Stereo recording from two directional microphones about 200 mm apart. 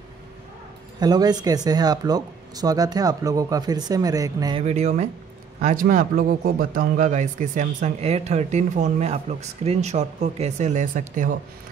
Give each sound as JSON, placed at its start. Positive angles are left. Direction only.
{"t": 0.9, "sound": "speech", "side_deg": -20}
{"t": 4.6, "sound": "a man's voice", "side_deg": -35}